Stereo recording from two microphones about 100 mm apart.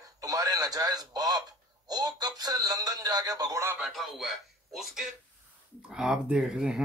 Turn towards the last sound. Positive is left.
turn(degrees=-5)  # may be behind; listen again after turning